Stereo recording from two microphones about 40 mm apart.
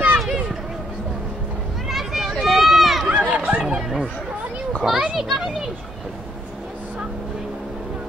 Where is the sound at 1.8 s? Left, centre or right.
Centre.